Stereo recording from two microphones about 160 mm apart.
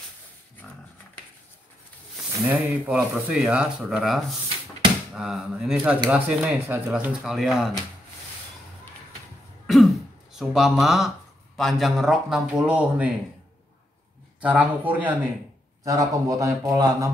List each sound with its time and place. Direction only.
2.4 s speech: 10° right (ahead or behind)
9.7 s throat clearing: centre (ahead or behind)
11.5 s speech: centre (ahead or behind)
14.4 s speech: 10° right (ahead or behind)
15.8 s a man's voice: 20° right (ahead or behind)